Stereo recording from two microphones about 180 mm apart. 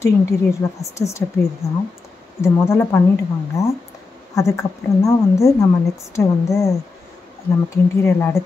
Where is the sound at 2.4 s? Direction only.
15° left (ahead or behind).